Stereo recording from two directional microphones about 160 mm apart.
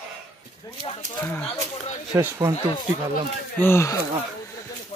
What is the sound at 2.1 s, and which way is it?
Speech, 15° right (ahead or behind).